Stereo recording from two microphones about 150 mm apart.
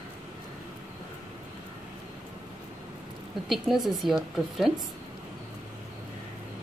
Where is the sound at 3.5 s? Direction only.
Centre (ahead or behind).